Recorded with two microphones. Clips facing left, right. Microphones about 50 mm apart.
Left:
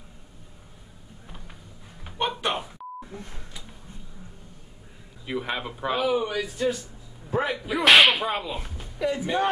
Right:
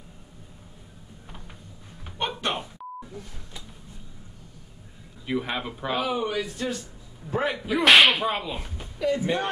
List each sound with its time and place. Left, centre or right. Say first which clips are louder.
2.0 s a sound: left 2 dB; centre
5.2 s whip: right 1 dB; centre
6.4 s speech: left 4 dB; centre
7.2 s whip: even; centre
8.9 s speech: right 1 dB; centre